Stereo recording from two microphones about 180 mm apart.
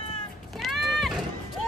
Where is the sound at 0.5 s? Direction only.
Centre (ahead or behind).